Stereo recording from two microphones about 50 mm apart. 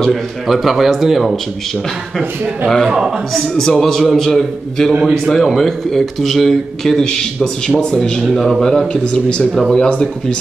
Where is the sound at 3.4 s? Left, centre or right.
Centre.